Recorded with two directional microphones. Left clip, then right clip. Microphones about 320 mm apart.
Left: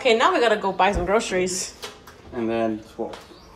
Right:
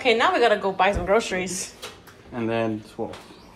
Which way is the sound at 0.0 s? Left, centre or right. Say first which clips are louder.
Left 1 dB; centre.